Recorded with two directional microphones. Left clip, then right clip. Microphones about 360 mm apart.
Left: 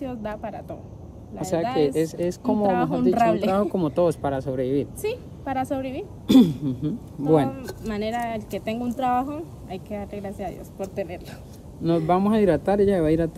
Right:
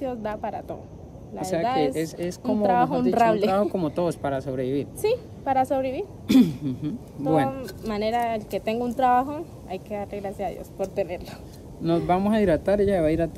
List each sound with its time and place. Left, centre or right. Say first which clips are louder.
0.0 s speech: right 2 dB; centre
1.9 s speech: left 4 dB; centre
6.2 s speech: left 3 dB; centre
7.8 s speech: right 3 dB; centre